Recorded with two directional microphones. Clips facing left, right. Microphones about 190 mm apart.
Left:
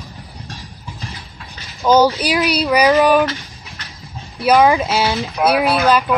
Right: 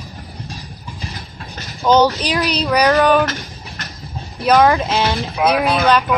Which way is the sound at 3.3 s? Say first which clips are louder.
Right 1 dB; 45° right (ahead or behind).